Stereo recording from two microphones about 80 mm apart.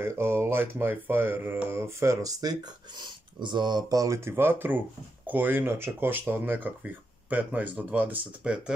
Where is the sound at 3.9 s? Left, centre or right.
Right; by 8.7 s centre.